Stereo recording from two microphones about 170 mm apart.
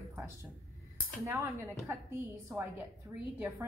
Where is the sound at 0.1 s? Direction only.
20° right (ahead or behind).